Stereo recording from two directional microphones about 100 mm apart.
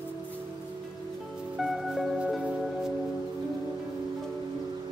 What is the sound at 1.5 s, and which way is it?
Music, centre (ahead or behind).